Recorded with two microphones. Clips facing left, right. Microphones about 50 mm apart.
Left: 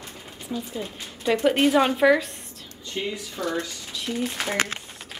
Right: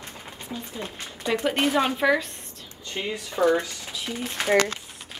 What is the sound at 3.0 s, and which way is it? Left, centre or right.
Speech, right.